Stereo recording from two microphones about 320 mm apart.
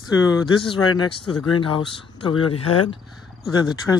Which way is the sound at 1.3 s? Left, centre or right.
Left.